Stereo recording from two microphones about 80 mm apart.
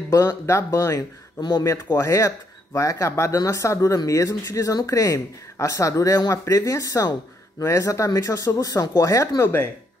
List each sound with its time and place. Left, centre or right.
0.1 s speech: left
9.4 s speech: left